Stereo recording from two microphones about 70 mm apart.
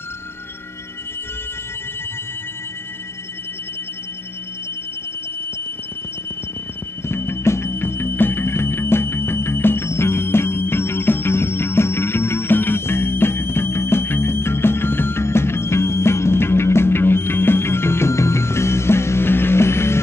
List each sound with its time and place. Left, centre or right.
7.1 s music: left